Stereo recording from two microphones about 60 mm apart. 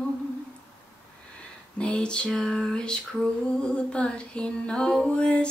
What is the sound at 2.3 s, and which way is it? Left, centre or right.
Female singing, centre.